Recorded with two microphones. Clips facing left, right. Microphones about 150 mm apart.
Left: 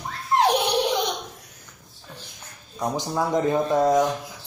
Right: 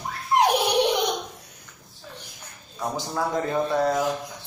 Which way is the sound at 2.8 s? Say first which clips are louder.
Left 2 dB; 20° left (ahead or behind).